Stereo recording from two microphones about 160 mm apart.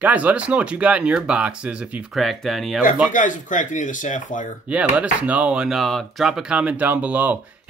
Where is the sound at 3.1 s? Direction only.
50° left (ahead or behind).